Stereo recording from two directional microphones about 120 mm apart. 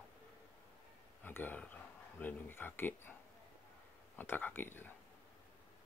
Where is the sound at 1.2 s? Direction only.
15° left (ahead or behind).